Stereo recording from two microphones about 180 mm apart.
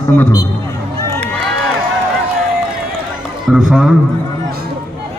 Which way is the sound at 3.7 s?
5° right (ahead or behind).